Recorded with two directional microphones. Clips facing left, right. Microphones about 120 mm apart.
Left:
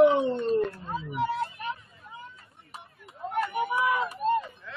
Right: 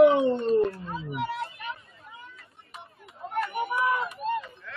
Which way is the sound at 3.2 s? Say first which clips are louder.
Left 1 dB; centre (ahead or behind).